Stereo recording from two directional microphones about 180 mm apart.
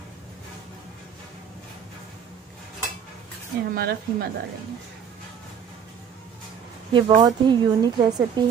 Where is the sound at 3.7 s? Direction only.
60° right (ahead or behind).